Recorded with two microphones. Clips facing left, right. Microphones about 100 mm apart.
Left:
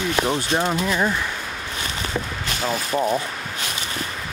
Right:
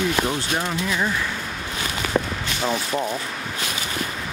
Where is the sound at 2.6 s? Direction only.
Centre (ahead or behind).